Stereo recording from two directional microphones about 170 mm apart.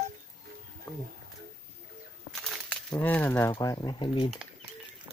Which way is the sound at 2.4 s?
5° left (ahead or behind).